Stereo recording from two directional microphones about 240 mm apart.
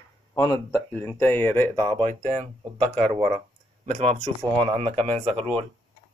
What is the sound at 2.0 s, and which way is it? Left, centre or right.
Speech, centre.